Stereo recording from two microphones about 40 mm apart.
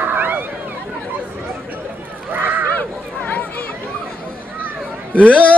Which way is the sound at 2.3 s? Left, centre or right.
Right.